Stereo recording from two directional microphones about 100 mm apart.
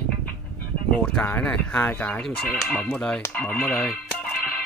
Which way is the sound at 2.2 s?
5° left (ahead or behind).